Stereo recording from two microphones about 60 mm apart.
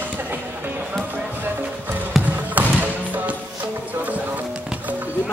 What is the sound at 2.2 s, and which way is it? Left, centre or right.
Music, right.